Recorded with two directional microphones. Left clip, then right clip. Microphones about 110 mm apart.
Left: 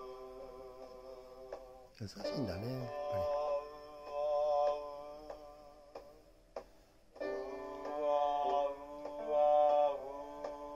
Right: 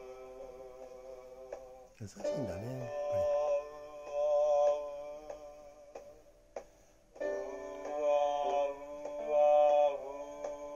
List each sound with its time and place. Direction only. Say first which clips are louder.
2.0 s speech: right 3 dB; centre (ahead or behind)
2.8 s speech: right 3 dB; 35° right (ahead or behind)
3.3 s music: right 4 dB; 45° right (ahead or behind)
3.6 s mantra: right 3 dB; 20° right (ahead or behind)
4.2 s mantra: right 4 dB; 40° right (ahead or behind)
7.2 s music: right 3 dB; 40° right (ahead or behind)
8.6 s mantra: right 2 dB; 35° right (ahead or behind)